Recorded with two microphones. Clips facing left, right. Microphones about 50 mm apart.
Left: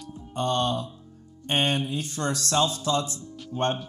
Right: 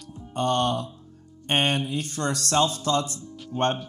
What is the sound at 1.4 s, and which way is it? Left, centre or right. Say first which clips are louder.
Speech: right 1 dB; right.